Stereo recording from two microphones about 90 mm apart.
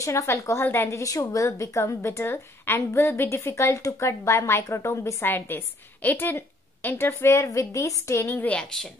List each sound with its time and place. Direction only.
0.0 s a woman's voice: 35° left (ahead or behind)
8.5 s a woman's voice: 10° left (ahead or behind)